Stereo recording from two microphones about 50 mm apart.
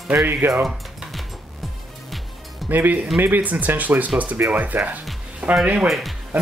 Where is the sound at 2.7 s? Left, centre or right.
Right.